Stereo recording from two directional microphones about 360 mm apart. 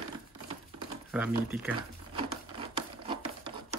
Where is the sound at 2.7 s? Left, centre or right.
Centre.